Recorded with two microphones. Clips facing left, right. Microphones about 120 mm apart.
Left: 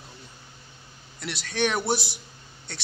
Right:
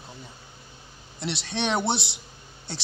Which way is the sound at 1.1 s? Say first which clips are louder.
Even; 25° right (ahead or behind).